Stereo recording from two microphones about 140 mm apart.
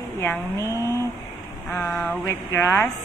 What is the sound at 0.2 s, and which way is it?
Speech, 20° left (ahead or behind).